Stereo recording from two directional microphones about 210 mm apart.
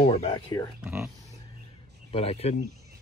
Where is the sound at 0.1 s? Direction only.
30° left (ahead or behind).